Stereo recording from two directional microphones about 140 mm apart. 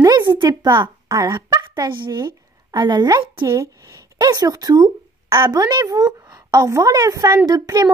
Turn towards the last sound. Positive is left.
turn(degrees=-25)  # may be behind; listen again after turning